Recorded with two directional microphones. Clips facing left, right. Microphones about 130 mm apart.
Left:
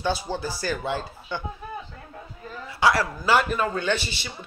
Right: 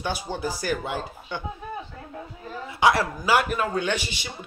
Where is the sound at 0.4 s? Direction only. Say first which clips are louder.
Right 1 dB; 15° right (ahead or behind).